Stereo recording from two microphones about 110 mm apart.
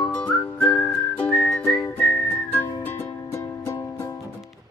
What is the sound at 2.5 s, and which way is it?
Music, 25° left (ahead or behind).